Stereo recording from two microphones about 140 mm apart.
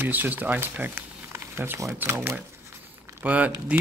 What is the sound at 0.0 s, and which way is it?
Speech, 15° right (ahead or behind).